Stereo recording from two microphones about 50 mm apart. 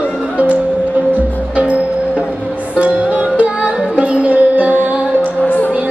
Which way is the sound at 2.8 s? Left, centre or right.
Right.